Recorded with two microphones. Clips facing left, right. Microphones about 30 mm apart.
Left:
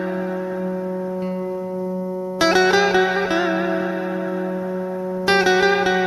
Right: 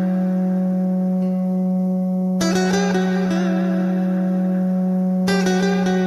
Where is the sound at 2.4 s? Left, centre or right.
Left.